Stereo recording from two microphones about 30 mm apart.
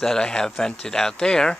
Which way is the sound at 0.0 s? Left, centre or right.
Left.